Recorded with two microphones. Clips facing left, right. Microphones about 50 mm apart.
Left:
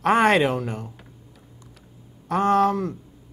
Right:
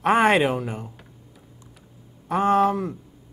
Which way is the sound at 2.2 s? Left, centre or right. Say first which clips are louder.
Even; centre.